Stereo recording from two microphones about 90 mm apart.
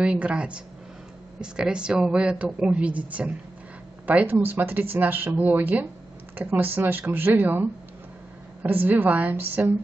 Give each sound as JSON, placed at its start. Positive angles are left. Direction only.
{"t": 0.0, "sound": "a woman's voice", "side_deg": -10}
{"t": 8.6, "sound": "speech", "side_deg": -20}